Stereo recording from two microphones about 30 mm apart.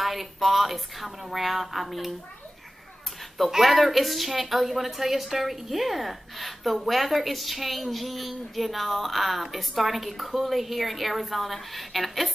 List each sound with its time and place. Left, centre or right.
0.0 s a woman's voice: centre
3.5 s a woman's voice: centre